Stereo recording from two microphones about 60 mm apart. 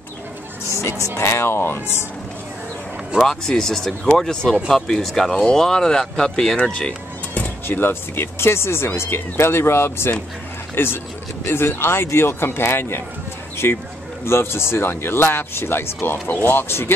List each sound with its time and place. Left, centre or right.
0.8 s speech: left
3.2 s speech: centre
7.3 s speech: left